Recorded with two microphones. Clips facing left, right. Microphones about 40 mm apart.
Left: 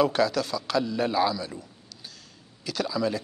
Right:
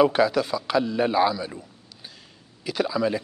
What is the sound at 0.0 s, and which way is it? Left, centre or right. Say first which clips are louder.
A man's voice: right 4 dB; centre.